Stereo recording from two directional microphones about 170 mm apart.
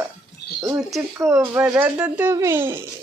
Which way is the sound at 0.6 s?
20° right (ahead or behind).